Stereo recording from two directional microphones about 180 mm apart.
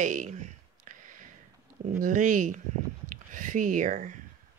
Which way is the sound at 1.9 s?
45° right (ahead or behind).